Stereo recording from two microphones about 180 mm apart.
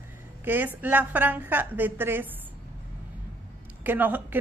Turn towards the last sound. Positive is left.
turn(degrees=-10)  # may be behind; listen again after turning